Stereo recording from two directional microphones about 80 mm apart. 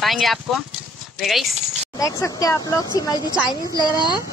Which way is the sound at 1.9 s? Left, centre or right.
Left.